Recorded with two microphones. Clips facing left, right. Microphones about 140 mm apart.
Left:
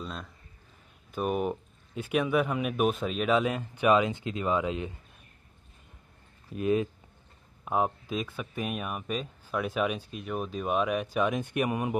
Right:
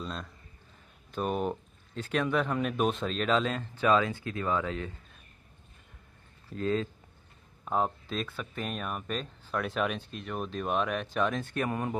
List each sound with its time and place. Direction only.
0.0 s a man's voice: 5° left (ahead or behind)
6.5 s speech: 15° left (ahead or behind)